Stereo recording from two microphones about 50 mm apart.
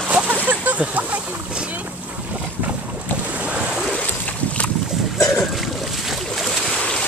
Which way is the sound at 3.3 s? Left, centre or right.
Right.